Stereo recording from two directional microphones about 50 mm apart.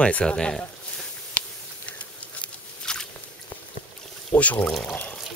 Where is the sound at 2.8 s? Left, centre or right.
Centre.